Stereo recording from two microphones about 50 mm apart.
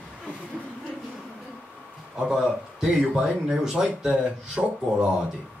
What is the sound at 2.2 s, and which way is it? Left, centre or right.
Speech, centre.